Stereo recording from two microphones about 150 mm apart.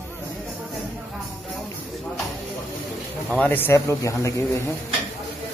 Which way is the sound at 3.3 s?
10° left (ahead or behind).